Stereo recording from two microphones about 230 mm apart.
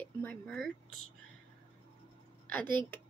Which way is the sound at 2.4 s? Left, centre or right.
Centre.